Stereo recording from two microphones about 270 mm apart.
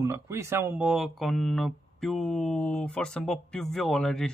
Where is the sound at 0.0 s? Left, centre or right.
Centre.